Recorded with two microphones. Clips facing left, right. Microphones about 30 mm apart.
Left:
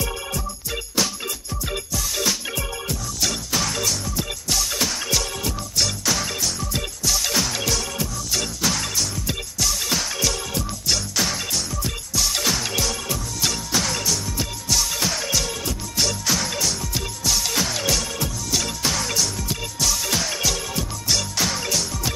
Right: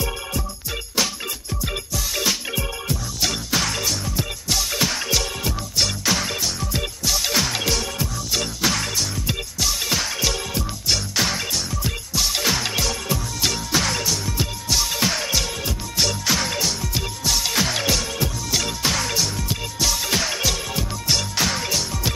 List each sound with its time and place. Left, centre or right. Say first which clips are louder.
1.0 s music: right 1 dB; centre